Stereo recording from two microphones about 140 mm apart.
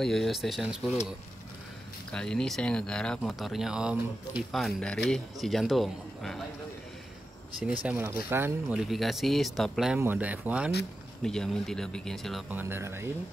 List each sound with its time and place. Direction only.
0.0 s speech: centre (ahead or behind)
2.1 s speech: 5° left (ahead or behind)
7.8 s speech: 10° right (ahead or behind)
8.7 s speech: centre (ahead or behind)
9.9 s speech: 10° right (ahead or behind)
11.2 s speech: 5° left (ahead or behind)
12.4 s speech: 15° right (ahead or behind)